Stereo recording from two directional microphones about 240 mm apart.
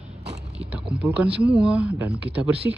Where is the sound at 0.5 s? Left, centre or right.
Centre.